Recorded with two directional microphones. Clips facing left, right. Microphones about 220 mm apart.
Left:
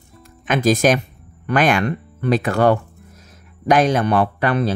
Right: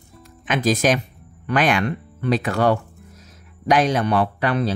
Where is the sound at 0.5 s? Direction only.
45° left (ahead or behind).